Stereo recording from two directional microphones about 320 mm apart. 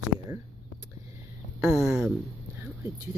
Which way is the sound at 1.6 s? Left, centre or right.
Centre.